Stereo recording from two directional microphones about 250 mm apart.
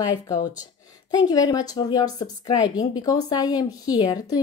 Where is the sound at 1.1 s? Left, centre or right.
Centre.